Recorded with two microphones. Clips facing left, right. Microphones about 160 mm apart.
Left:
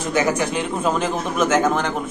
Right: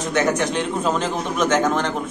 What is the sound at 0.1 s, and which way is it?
A man's voice, 10° left (ahead or behind).